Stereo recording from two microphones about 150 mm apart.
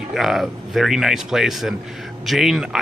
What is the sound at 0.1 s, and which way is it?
Speech, 5° right (ahead or behind).